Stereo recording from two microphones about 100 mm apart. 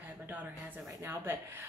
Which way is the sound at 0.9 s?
30° right (ahead or behind).